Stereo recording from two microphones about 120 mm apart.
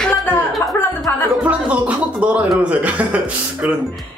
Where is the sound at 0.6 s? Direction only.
20° left (ahead or behind).